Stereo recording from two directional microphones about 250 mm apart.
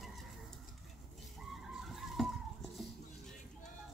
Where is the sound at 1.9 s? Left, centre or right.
Centre.